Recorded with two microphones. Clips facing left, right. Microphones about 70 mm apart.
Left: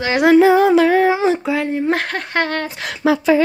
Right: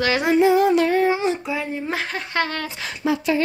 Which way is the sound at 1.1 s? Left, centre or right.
Left.